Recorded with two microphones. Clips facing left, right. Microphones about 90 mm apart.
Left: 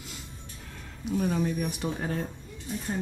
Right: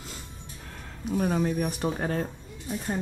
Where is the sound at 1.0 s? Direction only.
45° right (ahead or behind).